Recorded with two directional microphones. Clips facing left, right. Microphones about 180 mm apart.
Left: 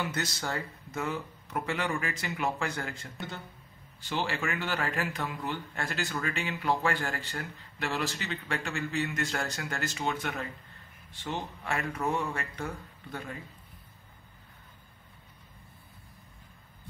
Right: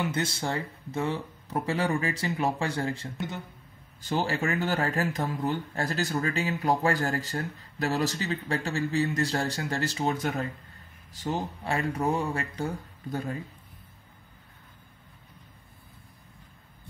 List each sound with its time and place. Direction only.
0.0 s speech: 25° right (ahead or behind)